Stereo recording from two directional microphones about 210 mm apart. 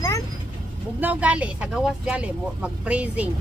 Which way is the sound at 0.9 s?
5° right (ahead or behind).